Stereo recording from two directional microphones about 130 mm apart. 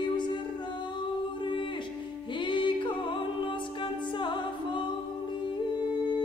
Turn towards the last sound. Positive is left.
turn(degrees=40)  # may be behind; listen again after turning